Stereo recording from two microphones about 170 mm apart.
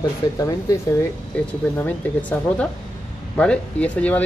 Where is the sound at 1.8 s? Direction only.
10° left (ahead or behind).